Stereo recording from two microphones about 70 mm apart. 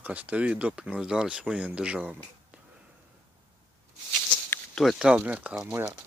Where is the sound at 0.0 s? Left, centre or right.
Right.